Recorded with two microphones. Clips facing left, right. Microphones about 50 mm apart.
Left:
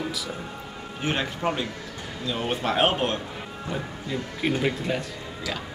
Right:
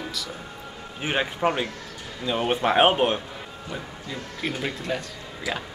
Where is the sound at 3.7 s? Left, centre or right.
Centre.